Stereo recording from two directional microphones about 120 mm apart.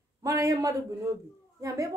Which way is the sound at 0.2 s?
25° right (ahead or behind).